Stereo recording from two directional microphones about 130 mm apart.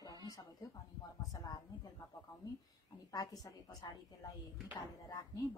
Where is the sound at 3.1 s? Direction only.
30° left (ahead or behind).